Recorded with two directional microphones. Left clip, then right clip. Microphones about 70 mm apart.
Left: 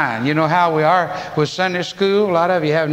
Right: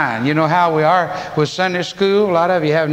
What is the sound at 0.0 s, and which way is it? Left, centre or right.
A man's voice, right.